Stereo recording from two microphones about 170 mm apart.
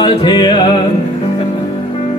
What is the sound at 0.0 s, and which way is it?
Speech, 30° left (ahead or behind).